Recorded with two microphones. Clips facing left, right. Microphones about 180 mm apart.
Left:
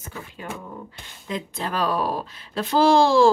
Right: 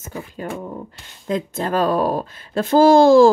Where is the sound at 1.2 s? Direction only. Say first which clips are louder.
Right 7 dB; 45° right (ahead or behind).